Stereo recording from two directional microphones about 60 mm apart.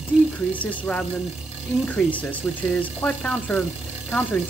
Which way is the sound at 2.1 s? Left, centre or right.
Left.